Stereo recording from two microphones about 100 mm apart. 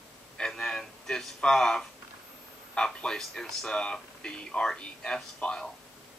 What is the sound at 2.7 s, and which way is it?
Speech, 10° left (ahead or behind).